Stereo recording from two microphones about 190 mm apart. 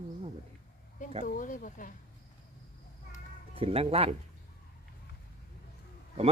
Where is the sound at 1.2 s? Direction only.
45° left (ahead or behind).